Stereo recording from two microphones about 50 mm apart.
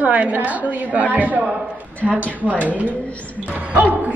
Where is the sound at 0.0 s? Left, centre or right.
Right.